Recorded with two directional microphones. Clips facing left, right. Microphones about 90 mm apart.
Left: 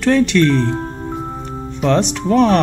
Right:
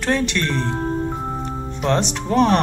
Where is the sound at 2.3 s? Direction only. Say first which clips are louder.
Left 3 dB; 20° right (ahead or behind).